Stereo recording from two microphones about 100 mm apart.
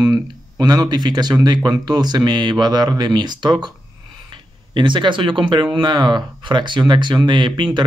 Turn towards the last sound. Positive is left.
turn(degrees=-50)  # may be behind; listen again after turning